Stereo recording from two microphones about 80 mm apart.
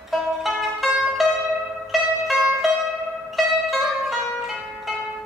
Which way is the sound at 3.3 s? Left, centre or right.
Centre.